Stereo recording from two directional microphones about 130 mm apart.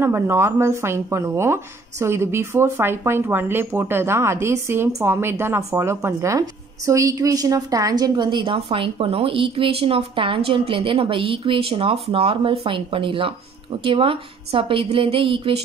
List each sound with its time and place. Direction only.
0.0 s a woman's voice: 20° right (ahead or behind); by 15.6 s 45° right (ahead or behind)